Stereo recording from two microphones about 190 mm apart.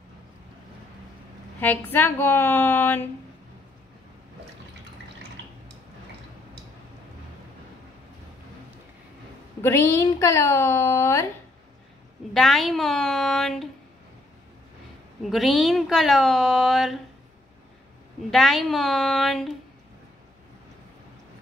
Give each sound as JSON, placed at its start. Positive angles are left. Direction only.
{"t": 1.6, "sound": "a woman's voice", "side_deg": 10}
{"t": 9.6, "sound": "a woman's voice", "side_deg": 15}
{"t": 12.4, "sound": "speech", "side_deg": 0}
{"t": 15.2, "sound": "speech", "side_deg": 0}
{"t": 18.3, "sound": "speech", "side_deg": 0}